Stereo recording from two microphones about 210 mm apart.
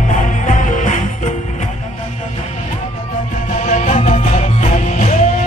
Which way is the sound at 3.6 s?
35° left (ahead or behind).